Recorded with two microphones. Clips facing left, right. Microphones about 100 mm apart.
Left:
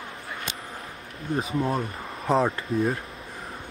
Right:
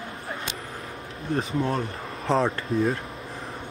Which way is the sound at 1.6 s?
5° left (ahead or behind).